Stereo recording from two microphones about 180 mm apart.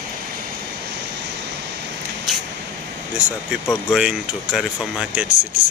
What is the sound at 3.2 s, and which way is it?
Speech, 10° right (ahead or behind).